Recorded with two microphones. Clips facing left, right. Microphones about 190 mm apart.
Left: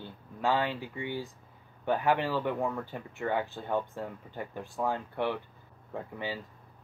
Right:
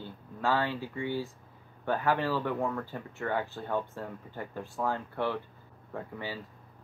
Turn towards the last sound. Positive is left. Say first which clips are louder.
# left 1 dB
turn(degrees=15)  # may be behind; listen again after turning